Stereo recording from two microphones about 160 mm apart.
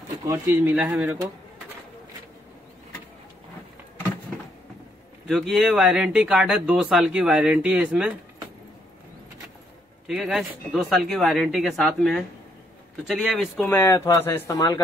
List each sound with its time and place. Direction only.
0.2 s speech: 25° right (ahead or behind)
0.7 s speech: 10° right (ahead or behind)
5.3 s speech: centre (ahead or behind)
10.0 s speech: 5° right (ahead or behind)
13.7 s speech: 15° left (ahead or behind)